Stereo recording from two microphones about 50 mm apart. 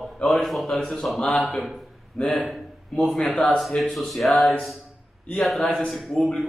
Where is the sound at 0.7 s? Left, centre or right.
Centre.